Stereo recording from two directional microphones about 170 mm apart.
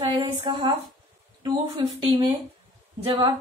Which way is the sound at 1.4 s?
25° right (ahead or behind).